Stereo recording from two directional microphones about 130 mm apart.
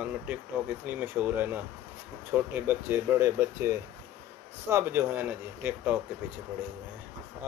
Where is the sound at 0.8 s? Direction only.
15° right (ahead or behind).